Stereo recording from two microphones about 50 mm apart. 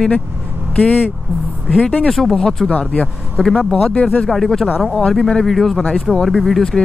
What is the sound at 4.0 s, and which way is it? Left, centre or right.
Speech, left.